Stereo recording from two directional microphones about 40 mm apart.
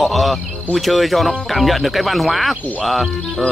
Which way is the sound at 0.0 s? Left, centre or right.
Centre.